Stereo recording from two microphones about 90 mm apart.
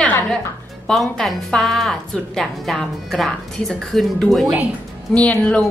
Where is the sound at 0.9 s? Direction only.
5° left (ahead or behind).